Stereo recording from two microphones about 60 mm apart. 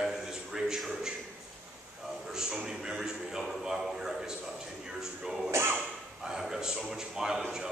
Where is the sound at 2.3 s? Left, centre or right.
Centre.